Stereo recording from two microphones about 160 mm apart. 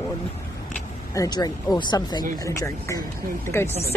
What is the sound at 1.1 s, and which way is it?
A woman's voice, 25° left (ahead or behind).